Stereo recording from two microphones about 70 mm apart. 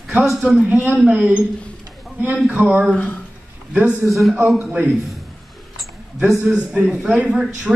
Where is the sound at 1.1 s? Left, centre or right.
Right.